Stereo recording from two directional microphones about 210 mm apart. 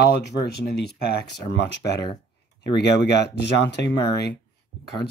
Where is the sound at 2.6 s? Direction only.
55° left (ahead or behind).